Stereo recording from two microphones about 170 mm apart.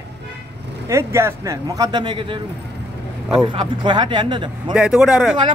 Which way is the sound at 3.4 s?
30° right (ahead or behind).